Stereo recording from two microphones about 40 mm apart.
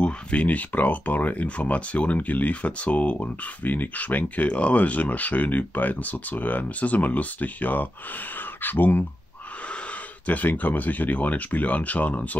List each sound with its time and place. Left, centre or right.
0.0 s speech: left
4.5 s speech: left
10.2 s speech: left